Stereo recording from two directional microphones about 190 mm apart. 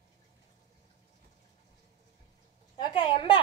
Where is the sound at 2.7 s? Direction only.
25° left (ahead or behind).